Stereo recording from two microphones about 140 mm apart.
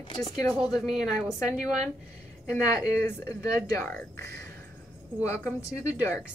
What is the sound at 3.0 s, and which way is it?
Speech, 15° left (ahead or behind).